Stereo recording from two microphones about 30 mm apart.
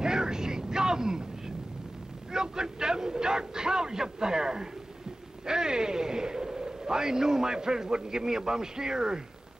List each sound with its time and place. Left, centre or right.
0.0 s vehicle: right
2.3 s a man's voice: right